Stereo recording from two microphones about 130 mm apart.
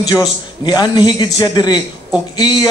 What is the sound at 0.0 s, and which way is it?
A man's voice, 30° left (ahead or behind).